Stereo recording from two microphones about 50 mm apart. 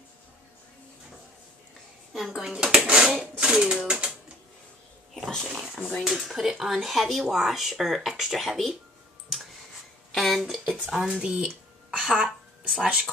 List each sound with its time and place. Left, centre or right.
2.1 s speech: centre
5.1 s a sound: centre
6.0 s speech: centre
10.1 s a sound: centre
10.7 s speech: centre
11.1 s a woman's voice: centre